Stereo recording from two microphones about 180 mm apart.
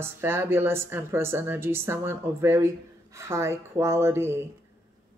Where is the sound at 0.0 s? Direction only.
15° right (ahead or behind).